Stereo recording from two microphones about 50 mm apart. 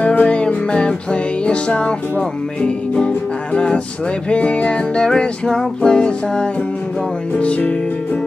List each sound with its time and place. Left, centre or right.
0.0 s music: left